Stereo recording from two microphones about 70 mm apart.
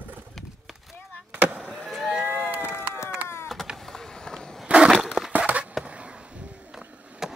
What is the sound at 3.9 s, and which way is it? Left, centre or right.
Run, centre.